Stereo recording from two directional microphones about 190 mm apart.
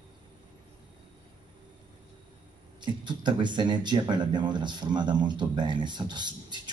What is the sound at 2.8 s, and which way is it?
Speech, 25° right (ahead or behind).